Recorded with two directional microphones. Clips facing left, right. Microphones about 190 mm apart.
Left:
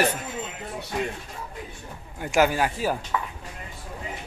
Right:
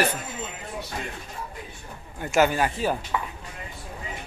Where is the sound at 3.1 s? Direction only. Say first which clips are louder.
Even; 15° right (ahead or behind).